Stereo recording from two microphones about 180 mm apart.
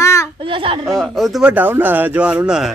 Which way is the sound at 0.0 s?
15° left (ahead or behind).